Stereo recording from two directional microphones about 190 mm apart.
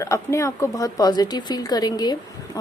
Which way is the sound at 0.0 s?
15° left (ahead or behind).